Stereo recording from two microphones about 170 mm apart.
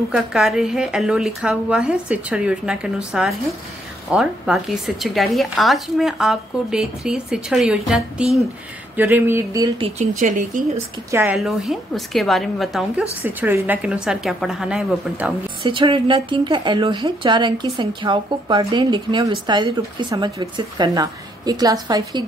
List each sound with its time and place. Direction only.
0.1 s speech: 5° right (ahead or behind)
8.9 s a sound: 10° right (ahead or behind)
9.8 s speech: 40° right (ahead or behind)
11.1 s a sound: 15° right (ahead or behind)
11.3 s speech: centre (ahead or behind)
15.6 s a woman's voice: 30° right (ahead or behind)